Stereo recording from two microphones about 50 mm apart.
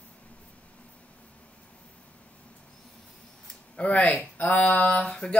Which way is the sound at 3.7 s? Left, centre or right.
Left.